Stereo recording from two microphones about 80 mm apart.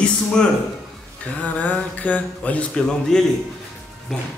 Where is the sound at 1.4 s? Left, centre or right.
Centre.